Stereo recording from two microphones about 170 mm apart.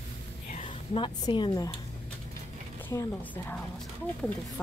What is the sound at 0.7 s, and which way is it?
Speech, 30° left (ahead or behind).